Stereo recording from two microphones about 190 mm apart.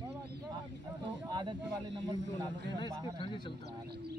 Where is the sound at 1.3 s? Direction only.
25° right (ahead or behind).